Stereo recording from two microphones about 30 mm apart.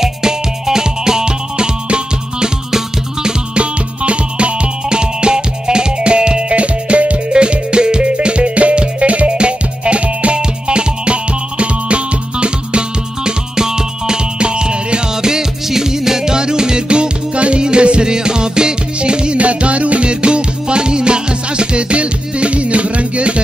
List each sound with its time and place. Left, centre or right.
0.0 s music: centre
3.5 s music: right
4.8 s music: right
6.5 s music: right
7.2 s music: right
9.3 s music: right
10.4 s music: right
14.4 s music: right
15.2 s music: centre; by 19.3 s right
19.3 s music: right
20.1 s music: right